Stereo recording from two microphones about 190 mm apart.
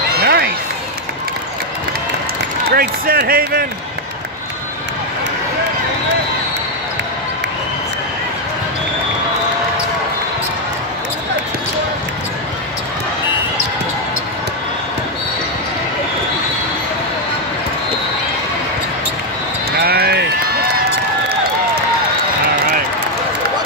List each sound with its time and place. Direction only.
0.1 s a sound: 55° right (ahead or behind)
2.7 s speech: 50° right (ahead or behind)
19.8 s run: 55° right (ahead or behind)